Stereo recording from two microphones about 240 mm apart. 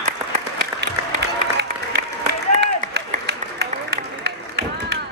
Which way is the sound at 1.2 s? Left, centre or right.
Right.